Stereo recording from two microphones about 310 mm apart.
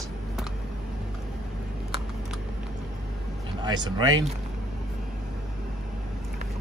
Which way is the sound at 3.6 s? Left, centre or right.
Centre.